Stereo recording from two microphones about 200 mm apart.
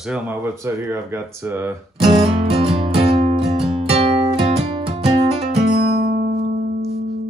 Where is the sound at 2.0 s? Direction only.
25° right (ahead or behind).